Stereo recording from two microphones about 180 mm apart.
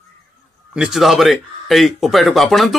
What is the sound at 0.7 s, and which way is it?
Speech, centre (ahead or behind).